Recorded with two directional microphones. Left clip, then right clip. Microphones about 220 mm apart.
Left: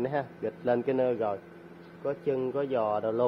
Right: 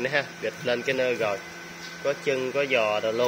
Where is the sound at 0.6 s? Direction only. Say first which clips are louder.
Right 1 dB; 10° left (ahead or behind).